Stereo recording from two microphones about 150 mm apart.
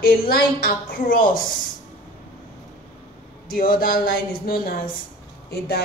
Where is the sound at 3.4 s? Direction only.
70° left (ahead or behind).